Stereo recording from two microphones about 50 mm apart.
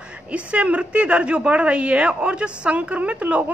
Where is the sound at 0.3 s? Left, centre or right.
Right.